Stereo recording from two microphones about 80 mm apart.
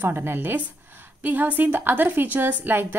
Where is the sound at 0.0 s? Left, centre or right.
Right.